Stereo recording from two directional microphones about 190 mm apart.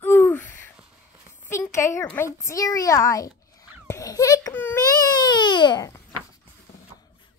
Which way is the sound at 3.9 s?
15° left (ahead or behind).